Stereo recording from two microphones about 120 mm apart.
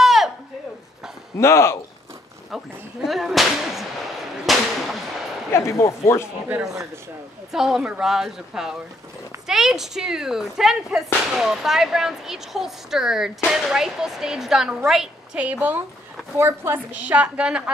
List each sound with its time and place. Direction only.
0.0 s a sound: centre (ahead or behind)
1.4 s speech: 20° left (ahead or behind)
2.5 s speech: centre (ahead or behind)
4.5 s a sound: centre (ahead or behind)
5.5 s speech: 20° left (ahead or behind)
6.2 s a woman's voice: 5° right (ahead or behind)